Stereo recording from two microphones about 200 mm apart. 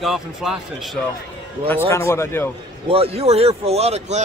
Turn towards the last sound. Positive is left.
turn(degrees=-35)  # may be behind; listen again after turning